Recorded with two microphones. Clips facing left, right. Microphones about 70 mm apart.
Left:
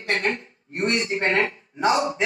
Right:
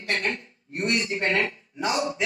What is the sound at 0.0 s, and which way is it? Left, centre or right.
A man's voice, left.